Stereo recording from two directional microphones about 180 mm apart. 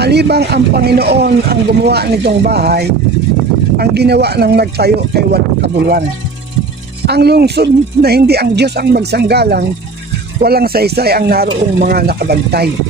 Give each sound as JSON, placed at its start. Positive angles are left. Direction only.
{"t": 0.0, "sound": "speech", "side_deg": -65}
{"t": 7.1, "sound": "speech", "side_deg": -65}